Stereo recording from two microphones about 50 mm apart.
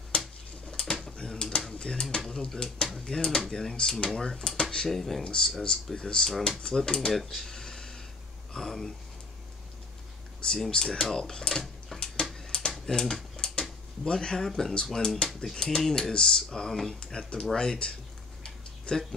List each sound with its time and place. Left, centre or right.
0.7 s bird: centre
1.0 s a sound: centre
1.8 s speech: centre
5.2 s speech: centre
7.2 s a sound: centre
8.5 s speech: centre
10.4 s speech: centre
11.9 s a sound: centre
12.4 s typing: centre
14.6 s speech: centre
18.4 s tick-tock: centre